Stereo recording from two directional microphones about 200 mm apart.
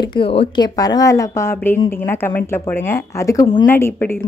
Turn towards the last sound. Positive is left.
turn(degrees=10)  # may be behind; listen again after turning